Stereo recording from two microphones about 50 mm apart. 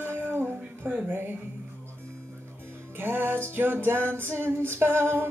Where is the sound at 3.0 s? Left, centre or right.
Right.